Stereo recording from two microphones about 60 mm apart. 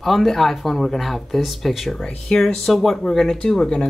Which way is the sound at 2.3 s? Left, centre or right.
Centre.